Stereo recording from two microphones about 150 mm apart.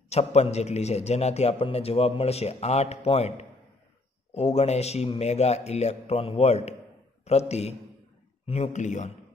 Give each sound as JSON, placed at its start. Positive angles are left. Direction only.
{"t": 0.1, "sound": "a man's voice", "side_deg": 45}